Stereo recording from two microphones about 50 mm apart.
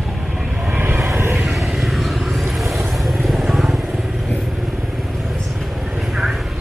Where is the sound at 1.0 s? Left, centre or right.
Right.